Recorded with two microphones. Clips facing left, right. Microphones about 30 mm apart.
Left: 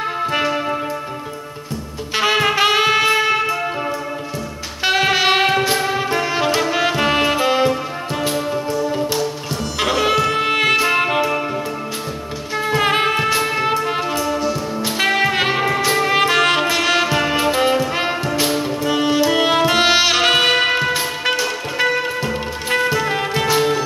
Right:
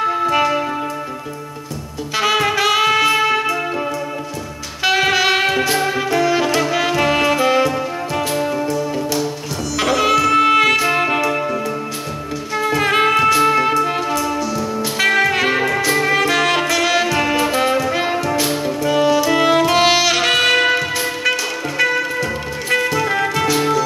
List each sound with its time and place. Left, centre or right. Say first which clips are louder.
2.1 s music: even; left
4.9 s music: even; left
5.7 s music: right 1 dB; centre
6.0 s music: right 3 dB; left
6.3 s music: right 1 dB; centre
8.7 s music: even; left
10.4 s music: right 3 dB; left
10.8 s music: even; centre
12.5 s music: right 1 dB; centre
14.8 s music: right 2 dB; left
15.5 s music: right 1 dB; centre
16.1 s music: left 2 dB; left
18.5 s music: even; centre
18.8 s music: right 3 dB; left